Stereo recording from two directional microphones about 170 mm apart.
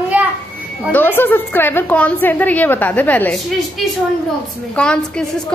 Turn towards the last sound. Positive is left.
turn(degrees=5)  # may be behind; listen again after turning